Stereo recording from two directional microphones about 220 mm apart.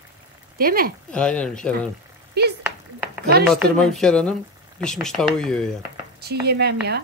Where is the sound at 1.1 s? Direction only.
5° left (ahead or behind).